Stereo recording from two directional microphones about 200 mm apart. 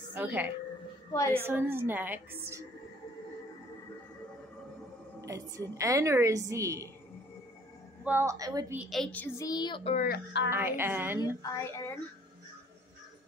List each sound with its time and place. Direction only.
0.1 s a woman's voice: 10° right (ahead or behind)
5.2 s a woman's voice: 15° right (ahead or behind)
8.0 s a woman's voice: 10° right (ahead or behind)
8.7 s a woman's voice: centre (ahead or behind)
9.5 s a child's voice: 20° left (ahead or behind)
9.9 s speech: 50° left (ahead or behind)
10.5 s a woman's voice: 10° right (ahead or behind)
11.1 s speech: 15° left (ahead or behind)